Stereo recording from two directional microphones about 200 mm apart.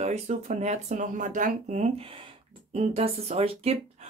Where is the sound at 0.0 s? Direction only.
35° right (ahead or behind).